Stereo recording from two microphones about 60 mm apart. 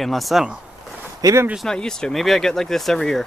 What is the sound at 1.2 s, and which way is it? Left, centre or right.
Speech, right.